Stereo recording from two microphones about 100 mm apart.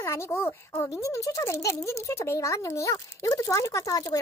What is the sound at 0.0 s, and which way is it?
Speech, 25° left (ahead or behind).